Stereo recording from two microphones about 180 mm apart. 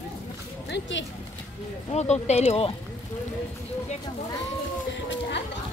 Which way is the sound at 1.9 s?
40° left (ahead or behind).